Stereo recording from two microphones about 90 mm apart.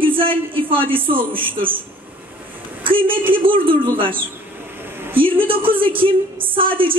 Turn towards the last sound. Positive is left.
turn(degrees=-75)  # may be behind; listen again after turning